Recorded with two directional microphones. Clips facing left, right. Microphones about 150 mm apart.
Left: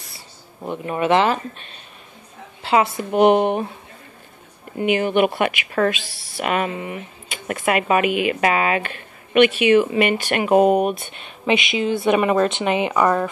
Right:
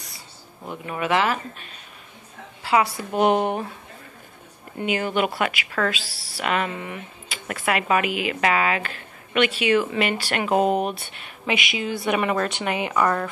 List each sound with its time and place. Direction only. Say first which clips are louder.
0.7 s speech: left 6 dB; 30° left (ahead or behind)
4.7 s speech: left 6 dB; 20° left (ahead or behind)